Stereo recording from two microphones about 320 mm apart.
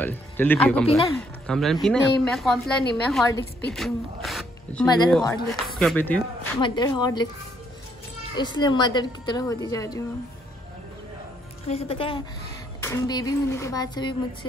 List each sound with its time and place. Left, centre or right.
0.0 s a man's voice: centre
3.7 s zipper: centre
4.8 s a woman's voice: centre
8.4 s speech: centre
11.6 s speech: centre